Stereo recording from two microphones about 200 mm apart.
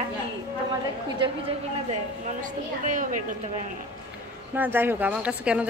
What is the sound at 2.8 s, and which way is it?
Speech, 40° right (ahead or behind).